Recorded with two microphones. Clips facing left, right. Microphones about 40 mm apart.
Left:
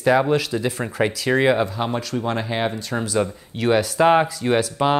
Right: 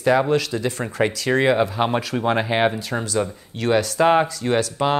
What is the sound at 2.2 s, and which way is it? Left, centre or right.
Speech, right.